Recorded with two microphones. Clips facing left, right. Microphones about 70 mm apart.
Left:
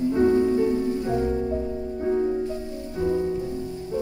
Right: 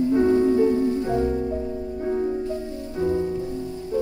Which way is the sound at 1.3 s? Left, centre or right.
Centre.